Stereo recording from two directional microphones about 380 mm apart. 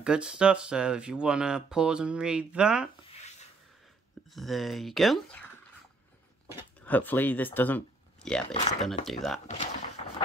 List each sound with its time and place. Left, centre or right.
0.0 s speech: centre
4.3 s speech: centre
6.5 s speech: centre
9.5 s a sound: centre